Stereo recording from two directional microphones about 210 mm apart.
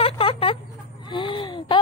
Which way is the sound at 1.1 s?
25° left (ahead or behind).